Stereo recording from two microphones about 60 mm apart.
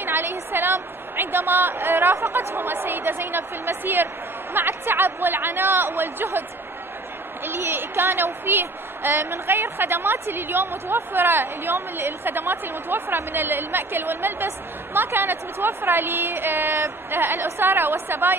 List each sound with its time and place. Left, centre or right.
0.0 s a sound: right
2.1 s a woman's voice: right
7.4 s a woman's voice: right